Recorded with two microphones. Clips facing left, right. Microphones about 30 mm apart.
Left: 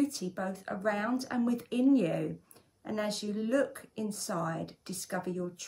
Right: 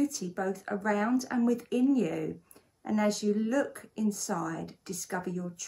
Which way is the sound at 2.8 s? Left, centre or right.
Left.